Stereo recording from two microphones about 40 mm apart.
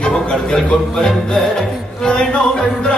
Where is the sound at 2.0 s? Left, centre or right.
Centre.